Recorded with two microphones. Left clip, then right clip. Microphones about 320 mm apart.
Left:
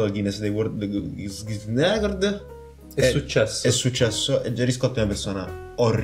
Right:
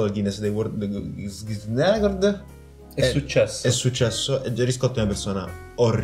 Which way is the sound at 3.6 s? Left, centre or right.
Centre.